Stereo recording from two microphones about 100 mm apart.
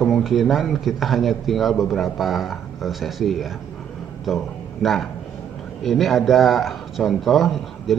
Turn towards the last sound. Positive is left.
turn(degrees=0)  # may be behind; listen again after turning